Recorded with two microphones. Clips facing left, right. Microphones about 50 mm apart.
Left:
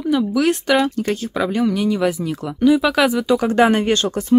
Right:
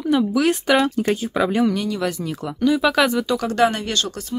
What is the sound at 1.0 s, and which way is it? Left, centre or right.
Speech, centre.